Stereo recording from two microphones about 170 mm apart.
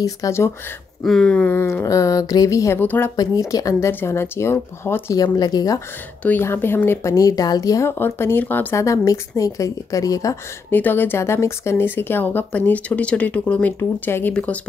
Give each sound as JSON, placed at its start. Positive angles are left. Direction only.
{"t": 0.0, "sound": "speech", "side_deg": 15}
{"t": 1.0, "sound": "speech", "side_deg": 5}
{"t": 6.2, "sound": "speech", "side_deg": 15}